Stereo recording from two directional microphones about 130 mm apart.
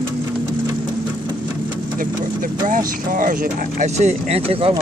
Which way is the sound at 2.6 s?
90° right.